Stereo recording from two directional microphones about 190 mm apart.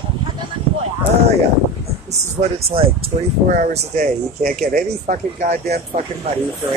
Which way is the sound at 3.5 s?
45° right (ahead or behind).